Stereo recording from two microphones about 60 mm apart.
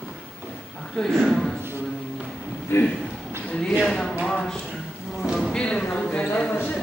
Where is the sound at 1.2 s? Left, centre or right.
Centre.